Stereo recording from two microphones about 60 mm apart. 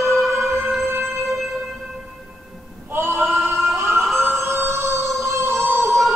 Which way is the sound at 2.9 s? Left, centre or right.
Right.